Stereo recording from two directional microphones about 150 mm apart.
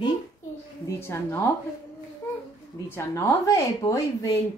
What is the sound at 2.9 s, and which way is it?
Speech, 15° left (ahead or behind).